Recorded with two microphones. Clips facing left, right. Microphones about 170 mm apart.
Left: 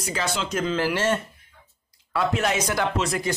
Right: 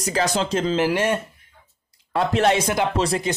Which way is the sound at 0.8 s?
20° right (ahead or behind).